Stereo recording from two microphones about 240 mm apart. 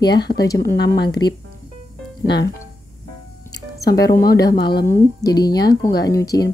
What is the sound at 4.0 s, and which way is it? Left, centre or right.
Speech, centre.